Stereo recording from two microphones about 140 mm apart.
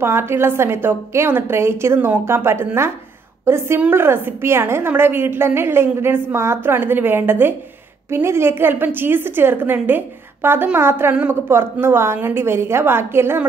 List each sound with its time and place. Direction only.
0.0 s a woman's voice: 15° right (ahead or behind)